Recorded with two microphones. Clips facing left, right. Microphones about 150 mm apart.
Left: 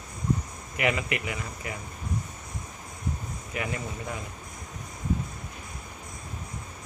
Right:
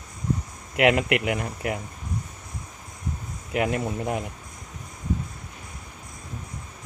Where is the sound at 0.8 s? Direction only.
75° right (ahead or behind).